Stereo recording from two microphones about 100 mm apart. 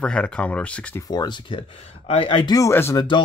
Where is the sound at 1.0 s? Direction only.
40° left (ahead or behind); by 2.4 s 65° left (ahead or behind).